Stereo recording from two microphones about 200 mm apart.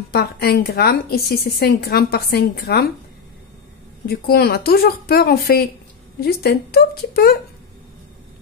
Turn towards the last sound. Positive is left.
turn(degrees=50)  # may be behind; listen again after turning